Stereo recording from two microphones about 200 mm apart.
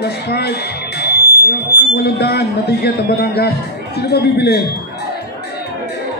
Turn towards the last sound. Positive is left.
turn(degrees=55)  # may be behind; listen again after turning